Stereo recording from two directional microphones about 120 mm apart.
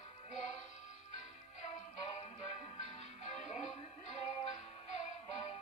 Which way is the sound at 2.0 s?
60° left (ahead or behind).